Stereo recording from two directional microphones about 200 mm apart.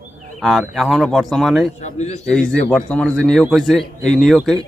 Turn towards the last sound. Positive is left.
turn(degrees=0)  # may be behind; listen again after turning